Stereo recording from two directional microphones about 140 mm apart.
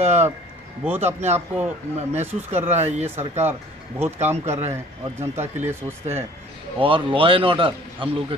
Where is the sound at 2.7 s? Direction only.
55° right (ahead or behind).